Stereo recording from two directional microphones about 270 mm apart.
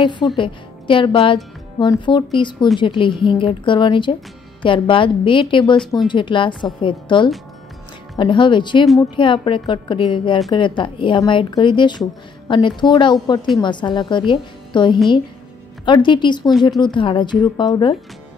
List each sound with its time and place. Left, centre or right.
0.0 s a woman's voice: centre